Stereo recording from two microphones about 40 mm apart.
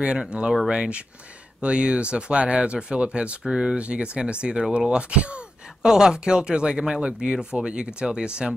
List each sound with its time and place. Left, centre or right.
0.3 s speech: right
5.8 s speech: centre